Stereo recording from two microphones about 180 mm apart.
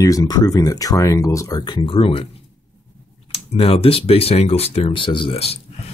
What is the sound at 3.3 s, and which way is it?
Speech, 35° left (ahead or behind).